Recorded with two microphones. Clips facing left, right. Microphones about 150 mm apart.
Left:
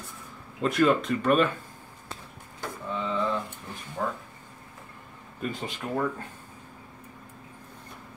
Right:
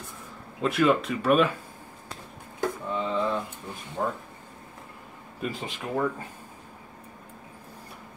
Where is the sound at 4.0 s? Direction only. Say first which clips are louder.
Right 2 dB; 20° right (ahead or behind).